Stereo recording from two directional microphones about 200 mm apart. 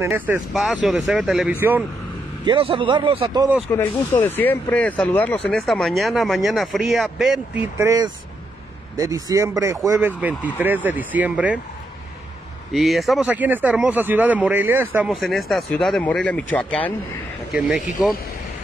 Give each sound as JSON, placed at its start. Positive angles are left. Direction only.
{"t": 0.0, "sound": "speech", "side_deg": -10}
{"t": 2.4, "sound": "a man's voice", "side_deg": -25}
{"t": 3.7, "sound": "speech", "side_deg": 10}
{"t": 7.7, "sound": "speech", "side_deg": -15}
{"t": 12.7, "sound": "speech", "side_deg": 0}